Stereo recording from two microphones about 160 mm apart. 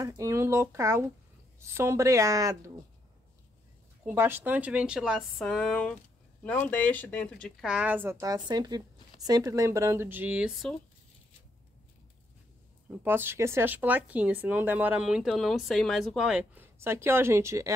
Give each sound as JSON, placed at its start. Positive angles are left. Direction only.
{"t": 0.0, "sound": "a woman's voice", "side_deg": -20}
{"t": 4.0, "sound": "a woman's voice", "side_deg": -15}
{"t": 7.7, "sound": "speech", "side_deg": -10}
{"t": 13.0, "sound": "speech", "side_deg": -15}